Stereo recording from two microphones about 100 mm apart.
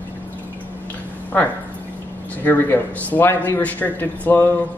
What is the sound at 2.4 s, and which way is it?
Speech, 20° left (ahead or behind).